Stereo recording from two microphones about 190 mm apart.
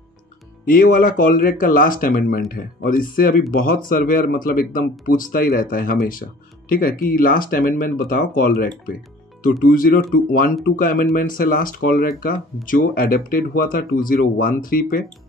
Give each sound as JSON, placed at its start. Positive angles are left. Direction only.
{"t": 0.7, "sound": "speech", "side_deg": 45}